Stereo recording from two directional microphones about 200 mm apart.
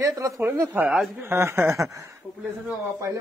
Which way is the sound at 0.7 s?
5° right (ahead or behind).